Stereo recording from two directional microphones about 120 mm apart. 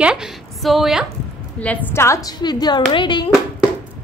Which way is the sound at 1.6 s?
10° left (ahead or behind).